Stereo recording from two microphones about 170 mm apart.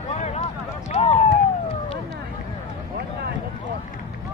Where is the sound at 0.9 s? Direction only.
40° left (ahead or behind).